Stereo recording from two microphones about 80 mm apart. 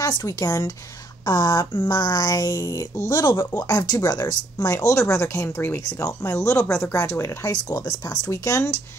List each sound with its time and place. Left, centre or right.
0.4 s speech: left
1.2 s speech: left
3.5 s speech: left
7.5 s speech: left